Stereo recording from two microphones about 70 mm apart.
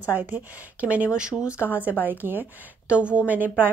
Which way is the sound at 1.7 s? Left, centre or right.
Right.